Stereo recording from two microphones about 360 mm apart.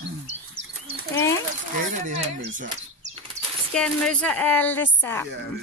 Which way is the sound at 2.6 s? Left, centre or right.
Centre.